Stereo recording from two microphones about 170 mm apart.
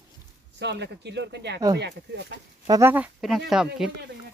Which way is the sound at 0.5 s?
90° right.